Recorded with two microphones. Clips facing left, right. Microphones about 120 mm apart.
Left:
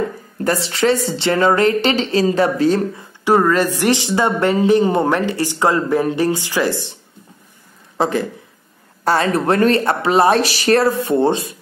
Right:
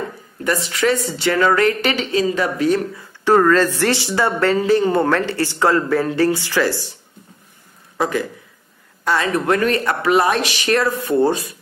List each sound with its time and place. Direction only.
0.4 s a woman's voice: 35° left (ahead or behind)
3.3 s a woman's voice: 15° left (ahead or behind)
8.0 s a woman's voice: 30° left (ahead or behind)